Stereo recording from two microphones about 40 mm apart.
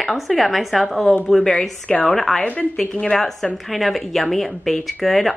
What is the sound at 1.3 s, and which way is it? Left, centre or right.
A woman's voice, centre.